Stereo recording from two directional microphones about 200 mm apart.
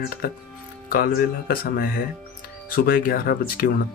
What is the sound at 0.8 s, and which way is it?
Speech, 45° left (ahead or behind).